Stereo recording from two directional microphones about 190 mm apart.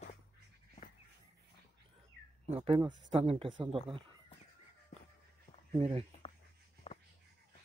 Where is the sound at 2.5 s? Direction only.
30° right (ahead or behind).